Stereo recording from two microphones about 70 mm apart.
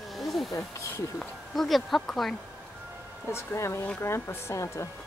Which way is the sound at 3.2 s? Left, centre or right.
Left.